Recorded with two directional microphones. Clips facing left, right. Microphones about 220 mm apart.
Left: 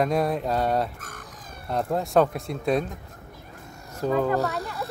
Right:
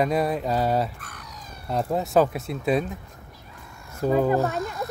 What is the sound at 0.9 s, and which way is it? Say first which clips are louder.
Cat: left 1 dB; 45° left (ahead or behind).